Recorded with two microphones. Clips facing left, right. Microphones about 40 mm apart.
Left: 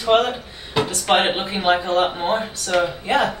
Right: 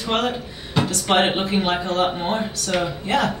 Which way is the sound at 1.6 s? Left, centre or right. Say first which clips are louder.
Left 3 dB; left.